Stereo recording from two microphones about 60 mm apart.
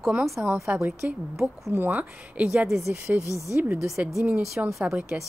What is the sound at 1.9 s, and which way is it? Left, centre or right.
Speech, right.